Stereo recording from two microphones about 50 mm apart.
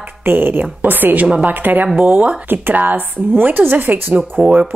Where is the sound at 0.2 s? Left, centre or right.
Right.